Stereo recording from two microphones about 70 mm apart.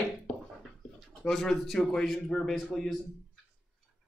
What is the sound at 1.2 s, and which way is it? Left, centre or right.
A man's voice, centre.